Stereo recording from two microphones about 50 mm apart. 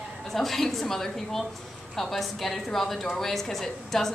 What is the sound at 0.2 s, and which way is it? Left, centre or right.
A woman's voice, centre.